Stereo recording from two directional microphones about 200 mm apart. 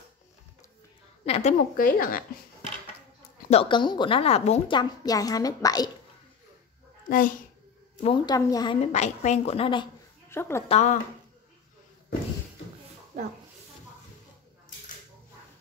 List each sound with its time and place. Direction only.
1.2 s a woman's voice: 30° left (ahead or behind)
1.8 s speech: 45° left (ahead or behind)
3.4 s a woman's voice: 30° left (ahead or behind)
7.1 s speech: 45° left (ahead or behind)
8.0 s a woman's voice: 25° left (ahead or behind)
8.8 s a woman's voice: 35° left (ahead or behind)
10.3 s a woman's voice: 10° left (ahead or behind)
10.7 s a woman's voice: 35° left (ahead or behind)
13.1 s speech: 40° right (ahead or behind)